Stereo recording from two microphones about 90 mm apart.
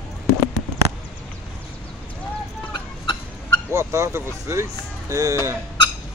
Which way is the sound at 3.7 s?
30° right (ahead or behind).